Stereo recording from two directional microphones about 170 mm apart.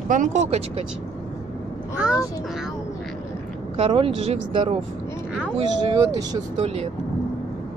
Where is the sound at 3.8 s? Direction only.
35° right (ahead or behind).